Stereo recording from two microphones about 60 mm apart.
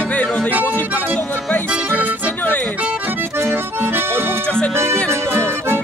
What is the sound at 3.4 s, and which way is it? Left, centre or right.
Accordion, right.